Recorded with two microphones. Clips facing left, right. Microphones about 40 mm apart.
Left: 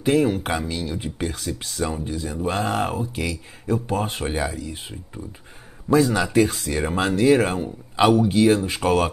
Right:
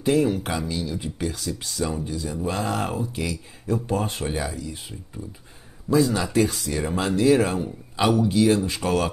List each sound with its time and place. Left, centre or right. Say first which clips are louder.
0.0 s speech: left 1 dB; left